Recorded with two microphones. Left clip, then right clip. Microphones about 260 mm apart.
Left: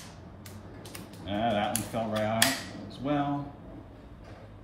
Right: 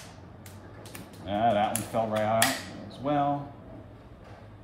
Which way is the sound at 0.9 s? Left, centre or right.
Centre.